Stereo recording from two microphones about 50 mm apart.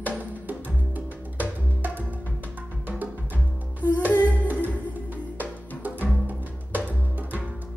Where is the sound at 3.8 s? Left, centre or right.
Right.